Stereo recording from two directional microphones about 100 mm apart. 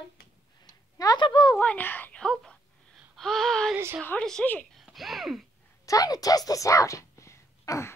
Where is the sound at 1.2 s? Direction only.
55° left (ahead or behind).